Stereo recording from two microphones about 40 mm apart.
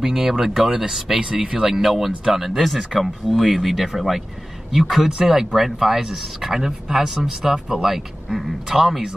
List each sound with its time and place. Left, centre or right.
0.0 s speech: centre